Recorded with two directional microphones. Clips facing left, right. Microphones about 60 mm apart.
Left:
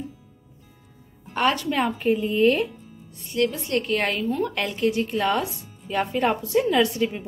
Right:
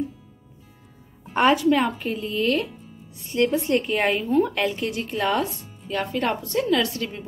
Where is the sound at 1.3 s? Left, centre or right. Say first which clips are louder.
Right 4 dB; centre.